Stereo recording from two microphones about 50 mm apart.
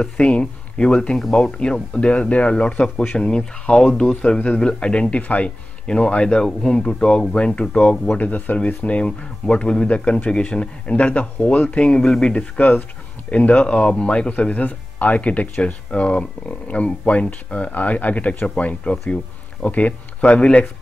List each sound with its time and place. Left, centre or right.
0.0 s speech: left
1.1 s speech: centre
1.4 s speech: centre